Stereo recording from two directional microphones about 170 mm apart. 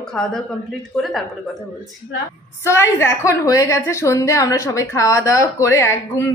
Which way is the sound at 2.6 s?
15° left (ahead or behind).